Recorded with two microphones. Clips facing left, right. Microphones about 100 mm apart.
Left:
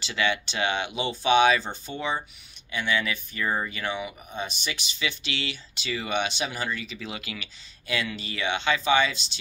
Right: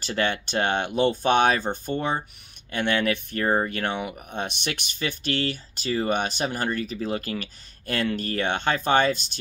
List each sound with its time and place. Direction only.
0.0 s speech: 45° right (ahead or behind)